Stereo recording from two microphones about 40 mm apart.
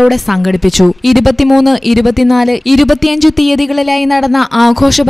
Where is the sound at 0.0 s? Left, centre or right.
Centre.